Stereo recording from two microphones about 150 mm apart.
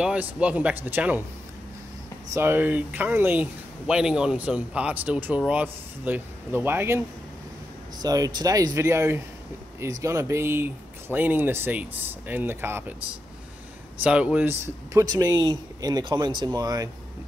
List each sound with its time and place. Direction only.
0.0 s speech: 10° right (ahead or behind)
2.3 s speech: 15° right (ahead or behind)
8.0 s speech: 25° right (ahead or behind)